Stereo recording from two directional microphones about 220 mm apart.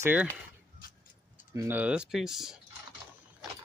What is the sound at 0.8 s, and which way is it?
Vehicle, 40° left (ahead or behind).